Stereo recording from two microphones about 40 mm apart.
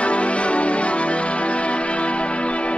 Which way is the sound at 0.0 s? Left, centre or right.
Left.